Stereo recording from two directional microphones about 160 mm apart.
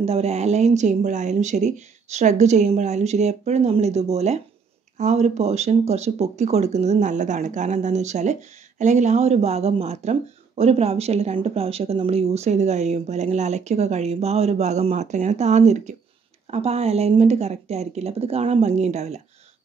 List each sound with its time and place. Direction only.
0.0 s a woman's voice: 40° right (ahead or behind)